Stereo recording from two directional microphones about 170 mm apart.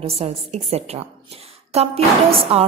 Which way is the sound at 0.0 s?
35° right (ahead or behind).